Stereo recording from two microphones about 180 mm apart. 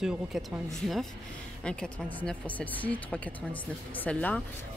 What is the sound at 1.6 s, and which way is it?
Speech, 5° left (ahead or behind).